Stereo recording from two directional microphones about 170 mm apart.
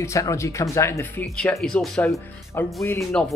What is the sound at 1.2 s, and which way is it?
Speech, centre (ahead or behind).